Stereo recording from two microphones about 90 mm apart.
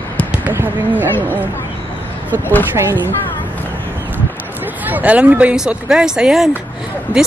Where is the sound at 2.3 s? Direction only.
20° left (ahead or behind).